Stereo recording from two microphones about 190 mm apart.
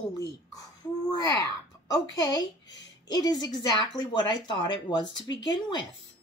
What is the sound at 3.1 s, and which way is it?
Speech, 20° left (ahead or behind).